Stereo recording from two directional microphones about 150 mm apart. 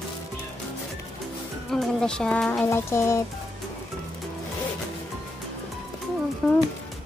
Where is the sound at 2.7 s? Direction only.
15° left (ahead or behind).